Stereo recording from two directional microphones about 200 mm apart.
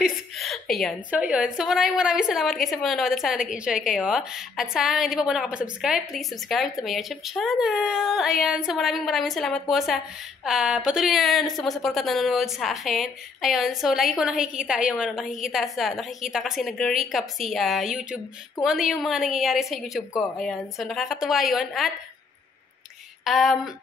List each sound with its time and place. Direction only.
0.0 s a woman's voice: centre (ahead or behind)
23.2 s a woman's voice: centre (ahead or behind)